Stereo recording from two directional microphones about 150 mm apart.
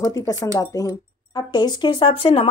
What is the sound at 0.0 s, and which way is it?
Speech, 25° left (ahead or behind).